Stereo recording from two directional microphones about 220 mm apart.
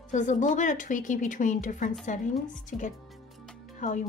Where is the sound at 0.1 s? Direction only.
35° left (ahead or behind).